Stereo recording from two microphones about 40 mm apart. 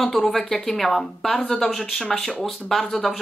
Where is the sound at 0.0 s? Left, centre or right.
Centre.